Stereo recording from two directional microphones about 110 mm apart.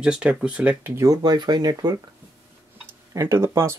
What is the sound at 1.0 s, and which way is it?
Speech, 35° right (ahead or behind).